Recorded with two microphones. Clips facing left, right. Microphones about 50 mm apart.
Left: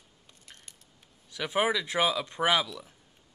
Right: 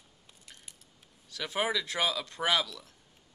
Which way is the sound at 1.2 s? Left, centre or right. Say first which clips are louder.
Left 4 dB; centre.